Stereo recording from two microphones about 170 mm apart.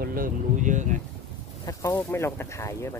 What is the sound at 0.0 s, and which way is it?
Speech, 55° right (ahead or behind).